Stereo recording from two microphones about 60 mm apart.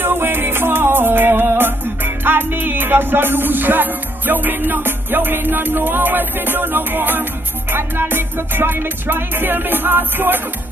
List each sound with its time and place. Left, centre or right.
0.0 s music: right